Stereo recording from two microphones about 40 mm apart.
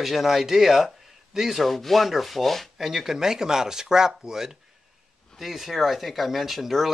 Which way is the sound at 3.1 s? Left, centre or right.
Centre.